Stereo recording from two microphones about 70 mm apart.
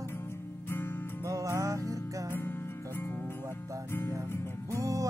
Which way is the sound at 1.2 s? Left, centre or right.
Right.